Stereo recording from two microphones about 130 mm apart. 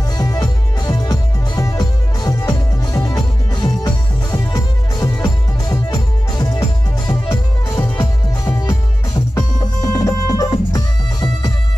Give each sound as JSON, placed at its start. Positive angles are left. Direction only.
{"t": 0.2, "sound": "music", "side_deg": 30}